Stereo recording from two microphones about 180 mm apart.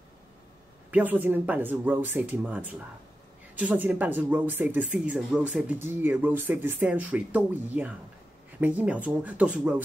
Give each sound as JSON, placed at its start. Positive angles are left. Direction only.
{"t": 0.9, "sound": "speech", "side_deg": -10}